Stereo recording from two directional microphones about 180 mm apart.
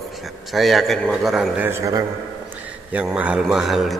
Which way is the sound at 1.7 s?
15° right (ahead or behind).